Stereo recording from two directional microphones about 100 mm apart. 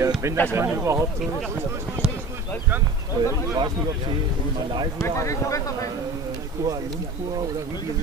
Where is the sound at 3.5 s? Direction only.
45° right (ahead or behind).